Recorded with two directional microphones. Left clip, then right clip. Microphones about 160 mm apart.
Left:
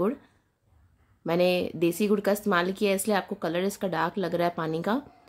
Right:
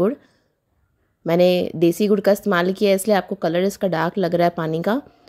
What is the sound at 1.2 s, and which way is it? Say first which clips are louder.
Speech: right 8 dB; 40° right (ahead or behind).